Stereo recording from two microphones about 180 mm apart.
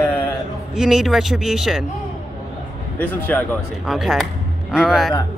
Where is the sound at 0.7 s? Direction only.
5° right (ahead or behind).